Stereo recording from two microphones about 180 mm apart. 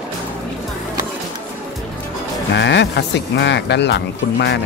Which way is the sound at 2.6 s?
75° left (ahead or behind).